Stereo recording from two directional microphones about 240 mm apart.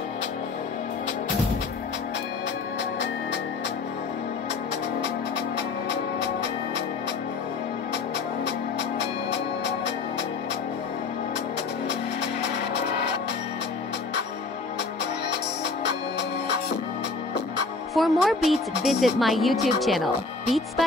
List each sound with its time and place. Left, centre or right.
11.9 s music: left
15.8 s music: left
17.9 s a woman's voice: centre